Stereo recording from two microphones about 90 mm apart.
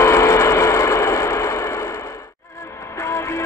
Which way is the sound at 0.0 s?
35° left (ahead or behind).